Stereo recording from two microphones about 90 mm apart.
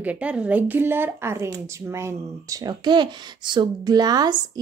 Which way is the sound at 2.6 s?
55° right (ahead or behind).